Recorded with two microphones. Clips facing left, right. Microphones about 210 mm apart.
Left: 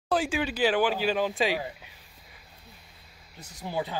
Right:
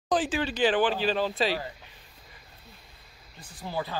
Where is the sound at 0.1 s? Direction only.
10° left (ahead or behind).